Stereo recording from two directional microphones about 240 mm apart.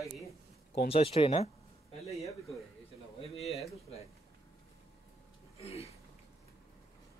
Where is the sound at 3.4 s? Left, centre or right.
Centre.